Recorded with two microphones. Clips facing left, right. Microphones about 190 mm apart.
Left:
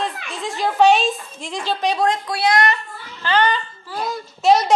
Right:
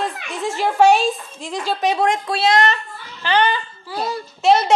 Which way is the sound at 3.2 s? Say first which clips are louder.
Right 1 dB; 10° right (ahead or behind).